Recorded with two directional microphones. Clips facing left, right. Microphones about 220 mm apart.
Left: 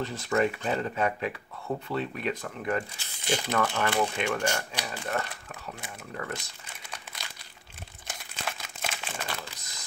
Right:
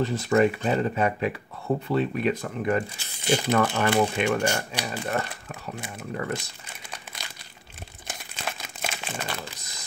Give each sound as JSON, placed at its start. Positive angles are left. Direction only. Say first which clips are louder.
{"t": 0.0, "sound": "speech", "louder": "right 6 dB", "side_deg": -10}
{"t": 6.9, "sound": "crumpling", "louder": "right 2 dB", "side_deg": -15}